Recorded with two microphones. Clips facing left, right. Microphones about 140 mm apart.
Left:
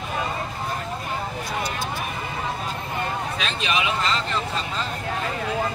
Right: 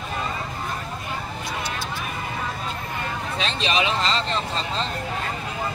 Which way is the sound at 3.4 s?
30° right (ahead or behind).